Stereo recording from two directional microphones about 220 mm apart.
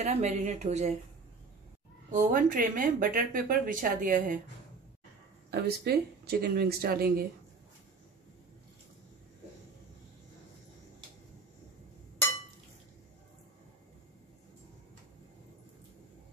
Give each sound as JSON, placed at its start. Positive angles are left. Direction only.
{"t": 0.0, "sound": "speech", "side_deg": -30}
{"t": 2.3, "sound": "speech", "side_deg": -40}
{"t": 5.5, "sound": "speech", "side_deg": -45}